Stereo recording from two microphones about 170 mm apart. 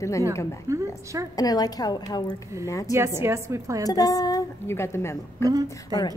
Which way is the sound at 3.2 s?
15° right (ahead or behind).